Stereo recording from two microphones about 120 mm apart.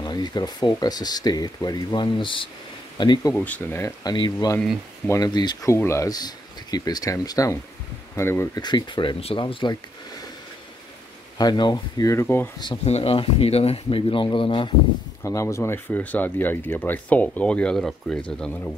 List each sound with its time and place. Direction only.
0.0 s speech: 35° left (ahead or behind)
3.3 s speech: 15° left (ahead or behind)
4.0 s speech: 35° left (ahead or behind)
5.7 s speech: 25° left (ahead or behind)
8.5 s speech: 35° left (ahead or behind)
11.3 s speech: 35° left (ahead or behind); by 12.4 s 20° left (ahead or behind)
12.8 s speech: 55° left (ahead or behind)
15.2 s speech: 25° left (ahead or behind)